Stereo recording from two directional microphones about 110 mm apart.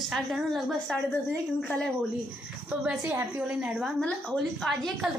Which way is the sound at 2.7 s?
15° right (ahead or behind).